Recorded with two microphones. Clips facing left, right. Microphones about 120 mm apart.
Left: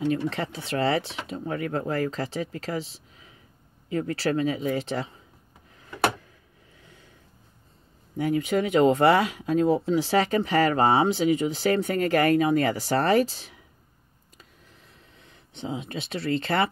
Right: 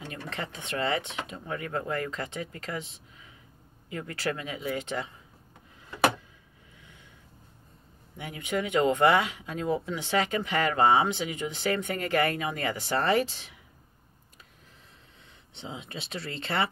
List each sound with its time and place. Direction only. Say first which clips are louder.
0.1 s speech: left 10 dB; 35° left (ahead or behind)
6.8 s a sound: left 2 dB; 35° left (ahead or behind)
8.2 s speech: left 8 dB; 35° left (ahead or behind)
15.5 s speech: left 7 dB; 40° left (ahead or behind)